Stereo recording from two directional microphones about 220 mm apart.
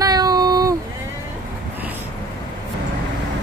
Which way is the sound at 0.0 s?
15° right (ahead or behind).